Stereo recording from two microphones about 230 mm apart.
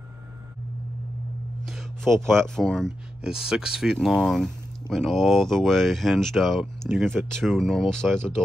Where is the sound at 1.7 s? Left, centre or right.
Centre.